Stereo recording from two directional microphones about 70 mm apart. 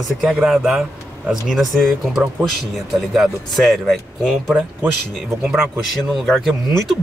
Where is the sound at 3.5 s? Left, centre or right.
Centre.